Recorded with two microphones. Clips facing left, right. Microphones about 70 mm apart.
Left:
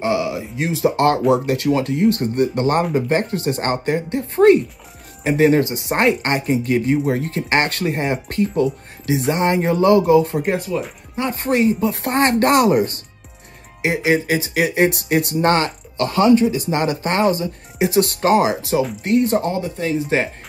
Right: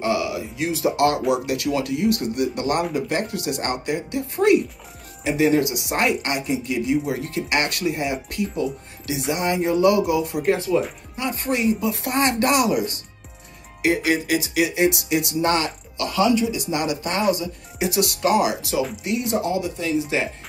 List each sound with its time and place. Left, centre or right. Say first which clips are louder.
0.0 s speech: left 3 dB; left
10.5 s speech: right 2 dB; centre
11.4 s speech: left 5 dB; left
13.8 s speech: left 2 dB; left